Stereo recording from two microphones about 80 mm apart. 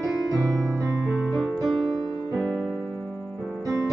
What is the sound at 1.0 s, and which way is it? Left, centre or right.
Piano, centre.